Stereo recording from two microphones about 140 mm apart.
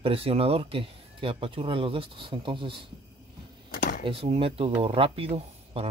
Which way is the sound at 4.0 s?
40° right (ahead or behind).